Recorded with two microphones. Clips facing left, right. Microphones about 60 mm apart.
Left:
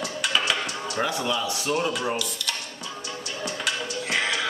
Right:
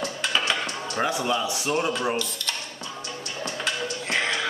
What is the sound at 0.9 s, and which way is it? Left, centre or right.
Speech, centre.